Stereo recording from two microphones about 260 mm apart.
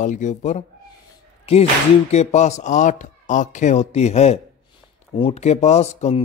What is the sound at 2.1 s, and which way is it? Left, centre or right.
Speech, left.